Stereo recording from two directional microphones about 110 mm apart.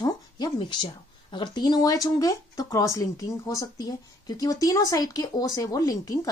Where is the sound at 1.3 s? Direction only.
40° left (ahead or behind).